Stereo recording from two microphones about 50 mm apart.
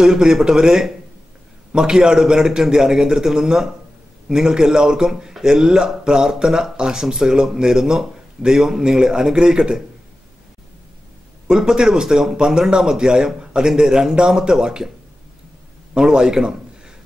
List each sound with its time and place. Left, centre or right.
0.0 s a man's voice: centre
11.4 s a man's voice: centre
15.9 s a man's voice: centre